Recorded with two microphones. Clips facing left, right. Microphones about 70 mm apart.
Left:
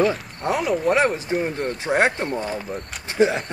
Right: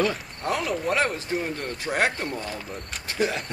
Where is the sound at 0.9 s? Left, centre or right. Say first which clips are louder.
Left 5 dB; centre.